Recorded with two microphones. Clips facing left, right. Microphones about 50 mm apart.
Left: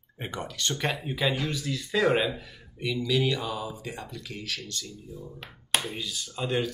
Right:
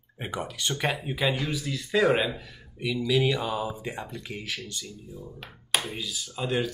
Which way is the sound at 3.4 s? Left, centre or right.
Right.